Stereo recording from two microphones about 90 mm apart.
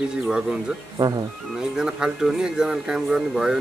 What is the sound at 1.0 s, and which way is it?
Speech, 50° right (ahead or behind).